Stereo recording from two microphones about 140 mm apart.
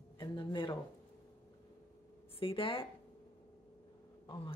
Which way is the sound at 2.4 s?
40° left (ahead or behind).